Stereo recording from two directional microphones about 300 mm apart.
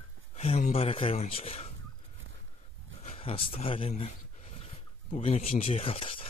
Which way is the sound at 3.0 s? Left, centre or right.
Centre.